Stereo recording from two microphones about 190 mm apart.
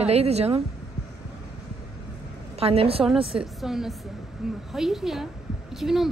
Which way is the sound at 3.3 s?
Centre (ahead or behind).